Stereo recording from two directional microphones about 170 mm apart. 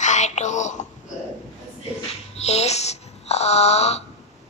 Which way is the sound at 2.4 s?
40° left (ahead or behind).